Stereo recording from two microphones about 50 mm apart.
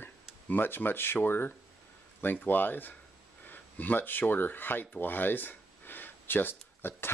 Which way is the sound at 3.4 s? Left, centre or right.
Left.